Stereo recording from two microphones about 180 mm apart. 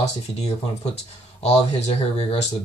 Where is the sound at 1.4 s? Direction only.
35° left (ahead or behind).